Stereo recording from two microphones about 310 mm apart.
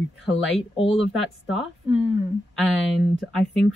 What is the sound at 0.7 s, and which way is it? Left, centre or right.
Speech, centre.